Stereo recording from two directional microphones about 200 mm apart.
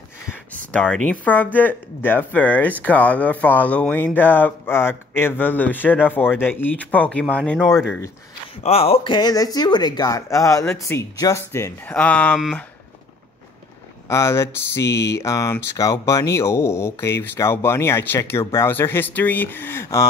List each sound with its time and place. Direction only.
0.7 s speech: 5° left (ahead or behind)
8.6 s speech: 30° left (ahead or behind); by 12.6 s centre (ahead or behind)
14.0 s speech: 15° left (ahead or behind)